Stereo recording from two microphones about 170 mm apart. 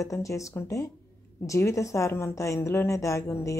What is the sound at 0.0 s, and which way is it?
Speech, 20° left (ahead or behind).